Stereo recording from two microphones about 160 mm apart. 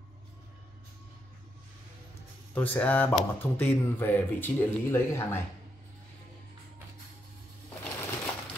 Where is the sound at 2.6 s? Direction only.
10° left (ahead or behind).